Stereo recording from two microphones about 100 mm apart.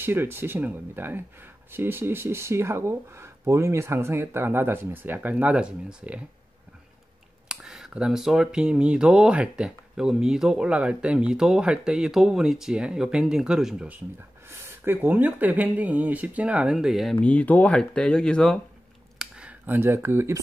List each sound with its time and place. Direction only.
0.0 s speech: 20° right (ahead or behind)
7.4 s speech: 5° right (ahead or behind)
14.5 s speech: 20° right (ahead or behind)
16.7 s speech: centre (ahead or behind)
17.2 s speech: 15° left (ahead or behind)
19.6 s speech: 20° right (ahead or behind)